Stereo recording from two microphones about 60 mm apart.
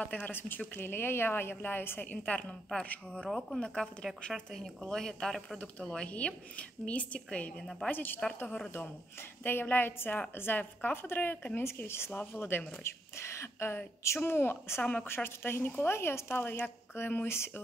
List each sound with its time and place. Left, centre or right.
0.0 s a woman's voice: left
3.3 s speech: centre
3.5 s a woman's voice: centre
5.6 s a woman's voice: centre
7.9 s a woman's voice: left
8.5 s a woman's voice: centre
9.4 s a woman's voice: left
14.8 s a woman's voice: left
15.0 s a woman's voice: left
16.4 s a woman's voice: left